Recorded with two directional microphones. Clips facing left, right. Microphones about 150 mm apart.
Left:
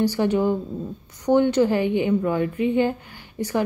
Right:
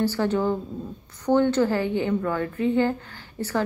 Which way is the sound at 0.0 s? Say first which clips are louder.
Left 3 dB; 15° left (ahead or behind).